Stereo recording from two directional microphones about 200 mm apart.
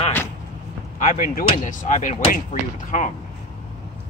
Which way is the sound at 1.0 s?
45° left (ahead or behind).